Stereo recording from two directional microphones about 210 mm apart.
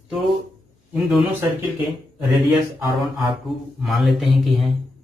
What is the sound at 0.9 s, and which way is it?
Speech, centre (ahead or behind).